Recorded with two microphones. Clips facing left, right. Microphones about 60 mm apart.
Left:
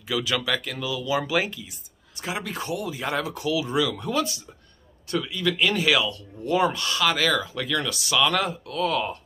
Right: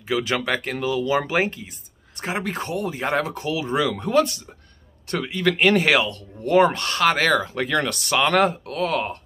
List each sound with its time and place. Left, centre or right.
0.1 s speech: right